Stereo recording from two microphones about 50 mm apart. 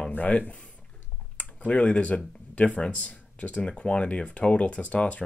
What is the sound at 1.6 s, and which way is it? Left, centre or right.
Speech, left.